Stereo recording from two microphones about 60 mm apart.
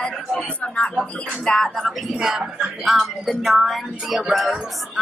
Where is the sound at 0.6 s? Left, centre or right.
Left; by 2.0 s centre.